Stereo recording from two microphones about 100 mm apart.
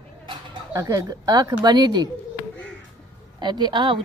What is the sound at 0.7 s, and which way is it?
Speech, 35° right (ahead or behind).